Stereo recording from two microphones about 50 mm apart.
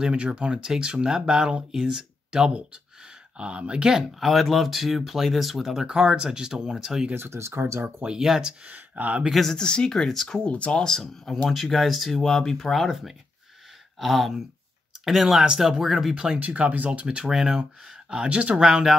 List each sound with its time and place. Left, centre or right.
0.0 s speech: centre
4.2 s speech: centre
7.2 s speech: right
8.2 s speech: centre
8.6 s speech: right
9.3 s speech: centre
9.6 s speech: centre
10.4 s speech: left
10.8 s speech: centre
15.8 s speech: centre
16.3 s speech: right
17.3 s speech: centre
18.1 s speech: right